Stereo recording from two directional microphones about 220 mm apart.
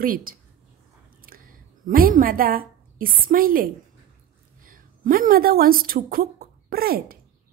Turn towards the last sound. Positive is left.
turn(degrees=-45)  # may be behind; listen again after turning